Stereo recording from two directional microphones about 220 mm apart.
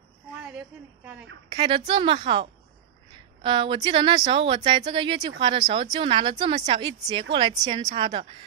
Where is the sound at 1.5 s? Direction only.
20° right (ahead or behind).